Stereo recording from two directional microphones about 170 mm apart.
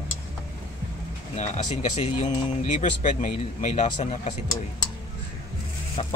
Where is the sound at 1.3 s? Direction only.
45° left (ahead or behind).